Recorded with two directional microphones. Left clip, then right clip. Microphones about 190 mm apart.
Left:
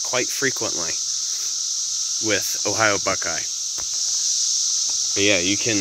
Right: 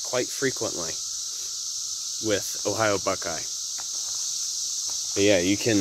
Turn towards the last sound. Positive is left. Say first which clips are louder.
# left 2 dB
turn(degrees=-20)  # may be behind; listen again after turning